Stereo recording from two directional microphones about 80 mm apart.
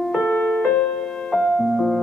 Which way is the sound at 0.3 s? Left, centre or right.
Centre.